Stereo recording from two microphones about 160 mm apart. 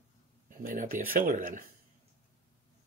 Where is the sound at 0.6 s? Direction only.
60° right (ahead or behind).